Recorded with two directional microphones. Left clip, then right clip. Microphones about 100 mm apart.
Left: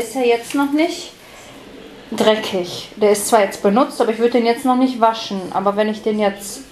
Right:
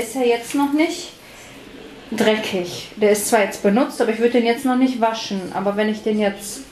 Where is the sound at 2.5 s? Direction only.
15° left (ahead or behind).